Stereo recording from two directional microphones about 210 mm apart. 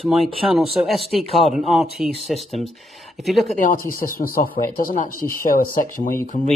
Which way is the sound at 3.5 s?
40° left (ahead or behind).